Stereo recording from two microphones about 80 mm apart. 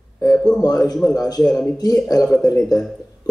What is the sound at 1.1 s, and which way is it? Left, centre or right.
A man's voice, left.